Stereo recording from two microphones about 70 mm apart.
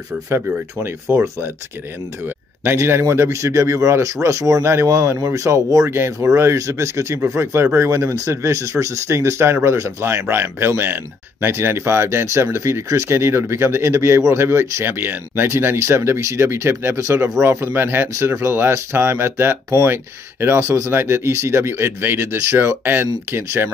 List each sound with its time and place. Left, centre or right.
1.0 s speech: right
2.6 s a man's voice: right